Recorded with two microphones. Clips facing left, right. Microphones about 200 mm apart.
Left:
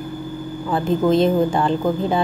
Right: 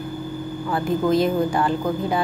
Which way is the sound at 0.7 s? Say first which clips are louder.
Left 3 dB; 25° left (ahead or behind).